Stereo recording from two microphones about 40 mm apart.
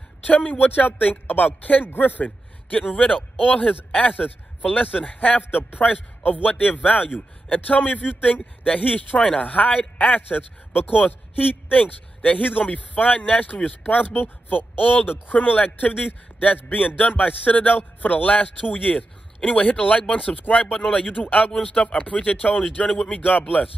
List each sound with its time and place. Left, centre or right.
0.2 s a man's voice: left
14.1 s speech: left